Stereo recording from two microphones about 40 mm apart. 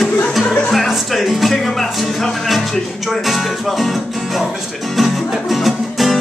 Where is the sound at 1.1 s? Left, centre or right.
Centre.